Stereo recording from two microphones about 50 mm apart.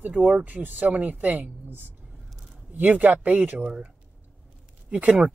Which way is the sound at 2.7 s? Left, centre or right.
Right.